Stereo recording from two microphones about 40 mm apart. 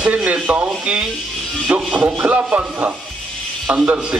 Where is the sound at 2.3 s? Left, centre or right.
Right.